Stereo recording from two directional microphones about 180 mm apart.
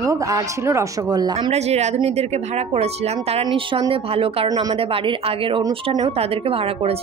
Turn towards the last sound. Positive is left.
turn(degrees=-35)  # may be behind; listen again after turning